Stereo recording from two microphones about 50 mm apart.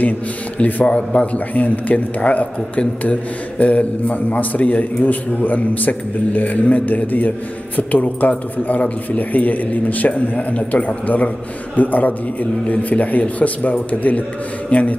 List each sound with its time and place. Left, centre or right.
0.6 s a man's voice: left